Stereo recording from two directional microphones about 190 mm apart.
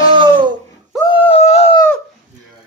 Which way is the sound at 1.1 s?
30° left (ahead or behind).